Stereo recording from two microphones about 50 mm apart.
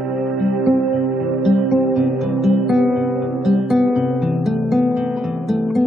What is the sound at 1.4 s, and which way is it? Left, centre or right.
Music, centre.